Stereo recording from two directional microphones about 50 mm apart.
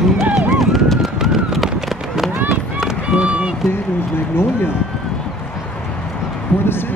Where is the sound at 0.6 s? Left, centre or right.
Centre.